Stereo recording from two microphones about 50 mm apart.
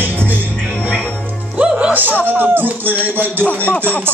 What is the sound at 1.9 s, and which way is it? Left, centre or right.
Music, right.